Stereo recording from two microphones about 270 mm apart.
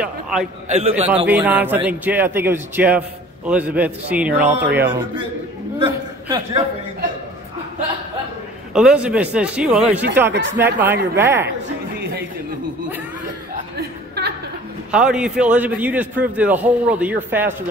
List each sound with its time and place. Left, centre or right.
0.0 s a man's voice: centre
0.7 s a man's voice: right
1.2 s a man's voice: centre
8.7 s a man's voice: centre
13.7 s a sound: right
14.9 s a man's voice: centre